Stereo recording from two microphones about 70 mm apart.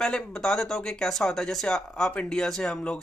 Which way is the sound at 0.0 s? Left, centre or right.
Centre.